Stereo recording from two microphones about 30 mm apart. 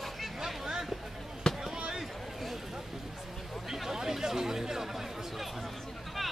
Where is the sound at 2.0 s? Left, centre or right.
Centre.